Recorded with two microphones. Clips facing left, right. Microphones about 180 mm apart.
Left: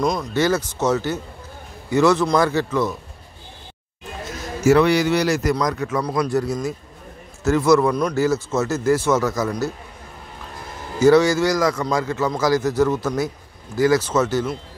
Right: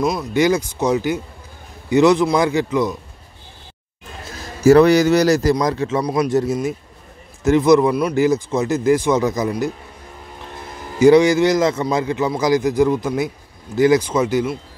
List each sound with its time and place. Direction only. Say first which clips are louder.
0.0 s speech: right 3 dB; 5° right (ahead or behind)
4.6 s a man's voice: right 5 dB; 40° right (ahead or behind); by 9.7 s 15° right (ahead or behind)
11.0 s speech: right 3 dB; 15° right (ahead or behind)